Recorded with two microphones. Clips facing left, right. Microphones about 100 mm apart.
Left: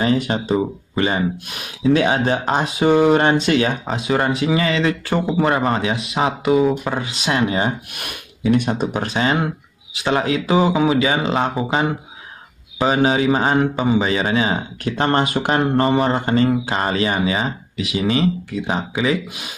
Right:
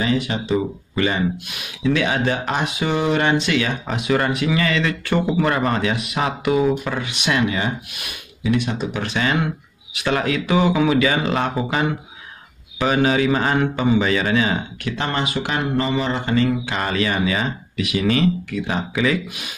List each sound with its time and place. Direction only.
0.0 s speech: 40° left (ahead or behind)
0.9 s speech: 30° left (ahead or behind)
7.9 s speech: 55° left (ahead or behind); by 14.6 s 25° left (ahead or behind)
14.9 s speech: 45° left (ahead or behind); by 19.1 s 25° left (ahead or behind)